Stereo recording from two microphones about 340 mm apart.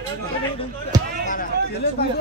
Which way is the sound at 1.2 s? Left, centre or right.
Left.